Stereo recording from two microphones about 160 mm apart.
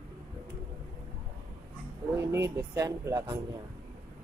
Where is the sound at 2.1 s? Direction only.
15° right (ahead or behind).